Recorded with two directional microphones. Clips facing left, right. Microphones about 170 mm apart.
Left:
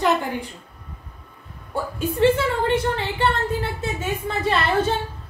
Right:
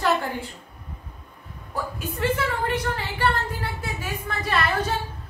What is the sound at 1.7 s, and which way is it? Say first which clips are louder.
A woman's voice: left 5 dB; 30° left (ahead or behind).